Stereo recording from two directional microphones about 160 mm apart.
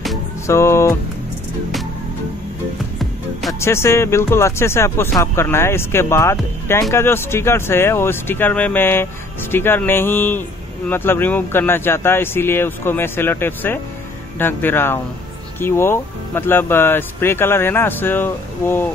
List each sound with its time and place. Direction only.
0.5 s speech: 15° left (ahead or behind)
3.6 s speech: 15° left (ahead or behind)